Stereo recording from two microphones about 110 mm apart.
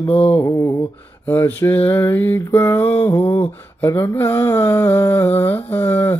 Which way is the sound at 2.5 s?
20° left (ahead or behind).